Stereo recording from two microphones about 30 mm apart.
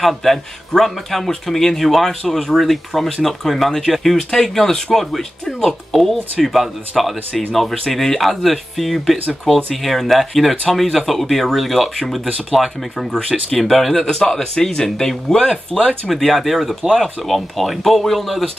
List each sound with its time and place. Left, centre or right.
0.0 s speech: centre
6.5 s speech: centre
13.1 s speech: centre
16.1 s speech: centre